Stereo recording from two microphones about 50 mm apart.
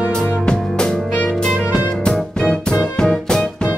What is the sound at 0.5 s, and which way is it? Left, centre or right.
Music, centre.